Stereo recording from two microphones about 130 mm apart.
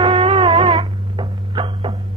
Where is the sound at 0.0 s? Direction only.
45° right (ahead or behind).